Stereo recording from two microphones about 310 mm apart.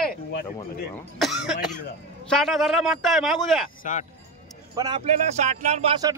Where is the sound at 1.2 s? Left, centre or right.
Centre.